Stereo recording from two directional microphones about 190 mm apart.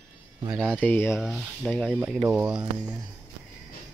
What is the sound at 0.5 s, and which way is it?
Speech, 5° left (ahead or behind).